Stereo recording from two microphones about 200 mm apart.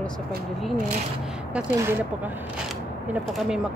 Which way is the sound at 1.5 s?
10° right (ahead or behind).